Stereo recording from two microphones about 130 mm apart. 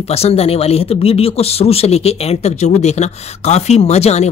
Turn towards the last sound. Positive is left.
turn(degrees=55)  # may be behind; listen again after turning